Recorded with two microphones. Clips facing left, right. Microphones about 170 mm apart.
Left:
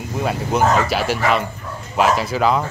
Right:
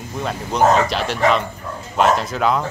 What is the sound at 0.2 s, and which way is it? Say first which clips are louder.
Speech: even; 5° left (ahead or behind).